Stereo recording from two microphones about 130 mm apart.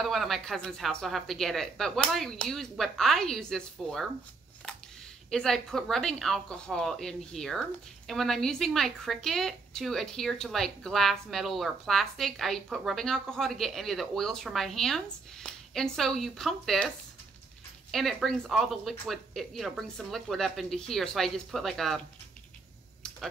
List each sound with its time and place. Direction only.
0.0 s a woman's voice: centre (ahead or behind)
5.3 s a woman's voice: 5° left (ahead or behind)
17.9 s a woman's voice: centre (ahead or behind)
23.0 s computer keyboard: 5° left (ahead or behind)